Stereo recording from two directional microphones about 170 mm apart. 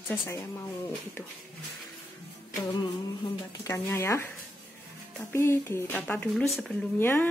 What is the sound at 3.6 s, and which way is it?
Speech, 15° left (ahead or behind).